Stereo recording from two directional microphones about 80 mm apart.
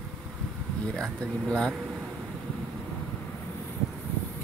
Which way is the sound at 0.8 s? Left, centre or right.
Centre.